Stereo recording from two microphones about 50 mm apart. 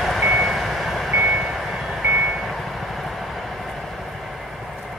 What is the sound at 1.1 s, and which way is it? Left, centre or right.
Vehicle, right.